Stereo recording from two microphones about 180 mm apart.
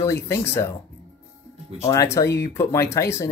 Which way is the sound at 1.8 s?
15° left (ahead or behind).